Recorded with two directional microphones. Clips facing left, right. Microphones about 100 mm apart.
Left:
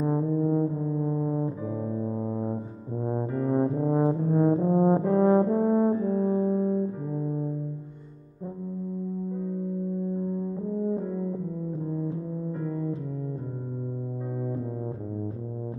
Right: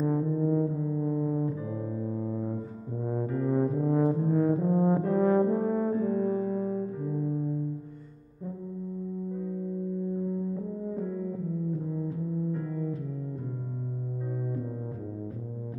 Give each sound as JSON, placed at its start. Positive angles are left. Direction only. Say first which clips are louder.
{"t": 0.0, "sound": "brass instrument", "louder": "left 2 dB", "side_deg": 25}
{"t": 7.2, "sound": "music", "louder": "left 1 dB", "side_deg": 25}
{"t": 11.9, "sound": "music", "louder": "left 3 dB", "side_deg": 25}